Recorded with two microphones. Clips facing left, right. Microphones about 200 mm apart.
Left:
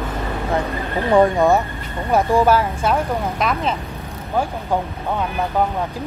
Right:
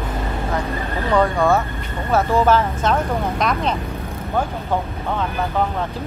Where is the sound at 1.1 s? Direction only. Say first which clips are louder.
Left 3 dB; 20° left (ahead or behind).